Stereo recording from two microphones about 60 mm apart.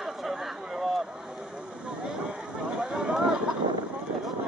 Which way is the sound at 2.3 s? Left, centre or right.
Centre.